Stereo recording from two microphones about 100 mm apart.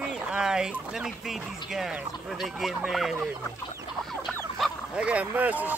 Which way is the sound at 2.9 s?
Centre (ahead or behind).